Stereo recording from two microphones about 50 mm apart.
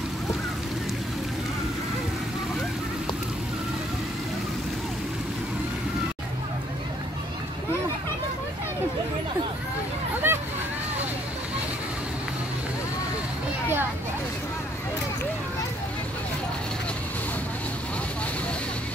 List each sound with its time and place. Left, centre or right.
10.2 s hubbub: right